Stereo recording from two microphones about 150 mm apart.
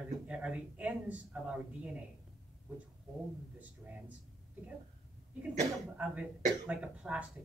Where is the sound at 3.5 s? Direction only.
10° right (ahead or behind).